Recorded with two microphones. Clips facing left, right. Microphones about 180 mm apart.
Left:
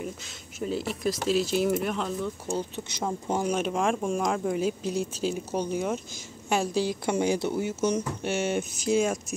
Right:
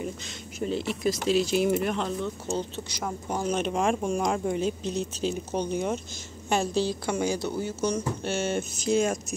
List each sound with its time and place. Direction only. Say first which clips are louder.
0.6 s speech: right 1 dB; 5° left (ahead or behind)
7.1 s speech: left 2 dB; 25° left (ahead or behind); by 9.2 s 5° left (ahead or behind)